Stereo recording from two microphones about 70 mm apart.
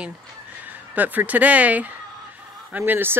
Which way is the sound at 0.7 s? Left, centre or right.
Right.